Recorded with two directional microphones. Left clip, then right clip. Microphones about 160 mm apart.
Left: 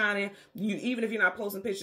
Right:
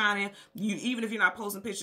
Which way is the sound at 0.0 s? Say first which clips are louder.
Right 1 dB; 30° right (ahead or behind).